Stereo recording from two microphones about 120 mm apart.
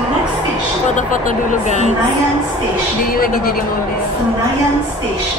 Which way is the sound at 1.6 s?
80° left.